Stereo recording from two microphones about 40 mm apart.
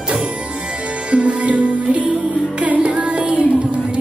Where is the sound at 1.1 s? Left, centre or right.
Right.